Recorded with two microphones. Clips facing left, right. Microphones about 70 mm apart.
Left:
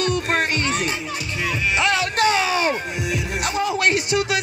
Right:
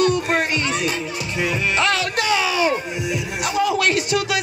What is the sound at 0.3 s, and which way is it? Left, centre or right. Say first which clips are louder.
Music: right 1 dB; left.